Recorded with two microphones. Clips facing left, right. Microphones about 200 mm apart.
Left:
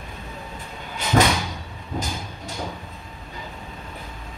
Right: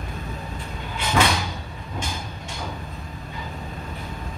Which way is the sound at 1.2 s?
40° left (ahead or behind).